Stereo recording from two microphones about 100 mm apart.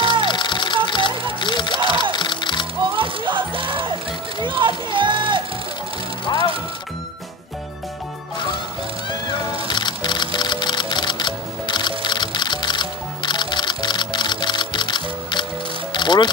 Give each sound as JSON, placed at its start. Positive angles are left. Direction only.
{"t": 0.0, "sound": "music", "side_deg": -55}
{"t": 0.3, "sound": "music", "side_deg": 50}
{"t": 1.4, "sound": "a sound", "side_deg": 50}
{"t": 2.1, "sound": "music", "side_deg": 50}
{"t": 2.8, "sound": "music", "side_deg": -55}
{"t": 4.4, "sound": "a sound", "side_deg": -55}
{"t": 9.7, "sound": "music", "side_deg": 50}